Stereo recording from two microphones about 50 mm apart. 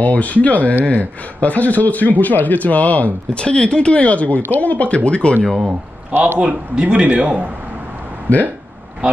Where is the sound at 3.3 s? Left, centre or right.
Centre.